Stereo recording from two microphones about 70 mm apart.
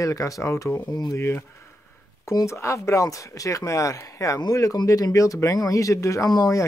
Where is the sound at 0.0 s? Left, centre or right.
Left.